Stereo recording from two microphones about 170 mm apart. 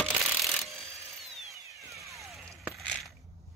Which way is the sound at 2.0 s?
Centre (ahead or behind).